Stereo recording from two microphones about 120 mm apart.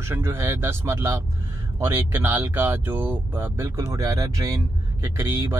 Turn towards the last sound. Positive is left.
turn(degrees=-20)  # may be behind; listen again after turning